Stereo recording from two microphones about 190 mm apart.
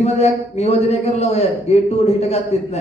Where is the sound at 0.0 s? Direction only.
35° left (ahead or behind).